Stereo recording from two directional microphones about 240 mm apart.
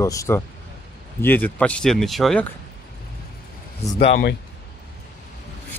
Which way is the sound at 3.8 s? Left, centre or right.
Centre.